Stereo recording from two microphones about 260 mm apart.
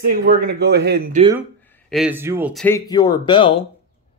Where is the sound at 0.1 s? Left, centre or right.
Right.